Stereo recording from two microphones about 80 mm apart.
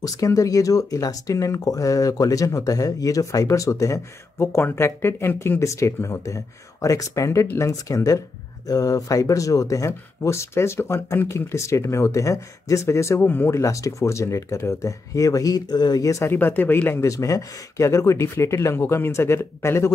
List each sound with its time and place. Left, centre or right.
0.0 s speech: left
5.6 s speech: left
16.3 s speech: left
17.0 s speech: left